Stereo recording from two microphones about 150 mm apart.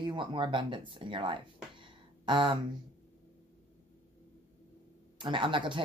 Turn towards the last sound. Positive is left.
turn(degrees=-35)  # may be behind; listen again after turning